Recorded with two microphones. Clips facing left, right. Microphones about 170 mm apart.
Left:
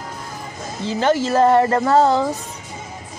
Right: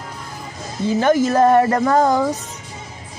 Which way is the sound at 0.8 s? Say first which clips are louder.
Right 3 dB; 15° right (ahead or behind).